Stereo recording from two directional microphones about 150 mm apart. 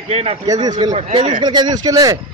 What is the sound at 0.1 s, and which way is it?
Speech, 45° right (ahead or behind).